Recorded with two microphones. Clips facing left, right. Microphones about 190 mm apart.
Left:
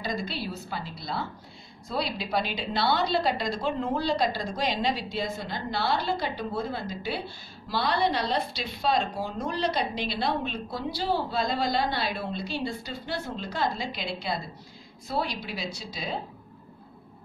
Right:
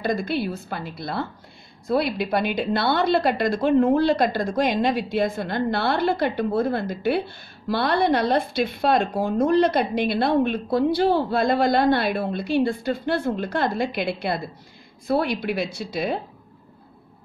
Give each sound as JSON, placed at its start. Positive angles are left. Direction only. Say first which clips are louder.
{"t": 0.0, "sound": "a woman's voice", "louder": "right 8 dB", "side_deg": -55}